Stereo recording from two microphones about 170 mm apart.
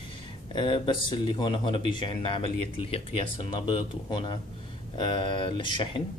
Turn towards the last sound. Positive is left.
turn(degrees=30)  # may be behind; listen again after turning